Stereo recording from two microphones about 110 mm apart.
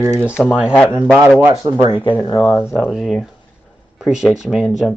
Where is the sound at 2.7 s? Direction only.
5° right (ahead or behind).